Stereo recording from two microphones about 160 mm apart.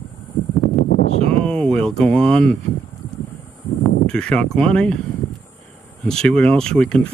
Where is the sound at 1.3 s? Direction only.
5° left (ahead or behind).